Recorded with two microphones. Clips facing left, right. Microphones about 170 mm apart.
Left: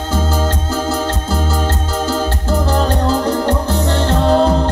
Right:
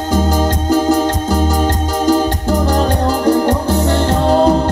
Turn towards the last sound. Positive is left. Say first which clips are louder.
# right 1 dB
turn(degrees=-10)  # may be behind; listen again after turning